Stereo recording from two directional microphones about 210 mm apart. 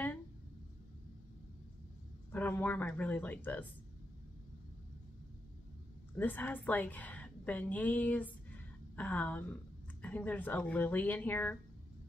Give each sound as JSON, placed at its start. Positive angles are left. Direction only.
{"t": 2.3, "sound": "speech", "side_deg": 10}
{"t": 6.1, "sound": "a woman's voice", "side_deg": 10}